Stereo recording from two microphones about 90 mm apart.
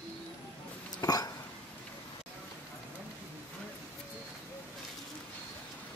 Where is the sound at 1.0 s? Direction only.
45° left (ahead or behind).